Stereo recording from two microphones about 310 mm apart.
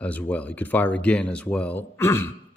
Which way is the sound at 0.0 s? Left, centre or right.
Centre.